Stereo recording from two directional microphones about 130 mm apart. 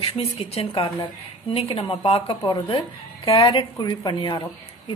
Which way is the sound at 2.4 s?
35° left (ahead or behind).